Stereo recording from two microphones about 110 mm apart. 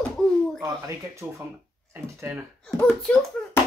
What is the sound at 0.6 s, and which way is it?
Speech, 25° right (ahead or behind).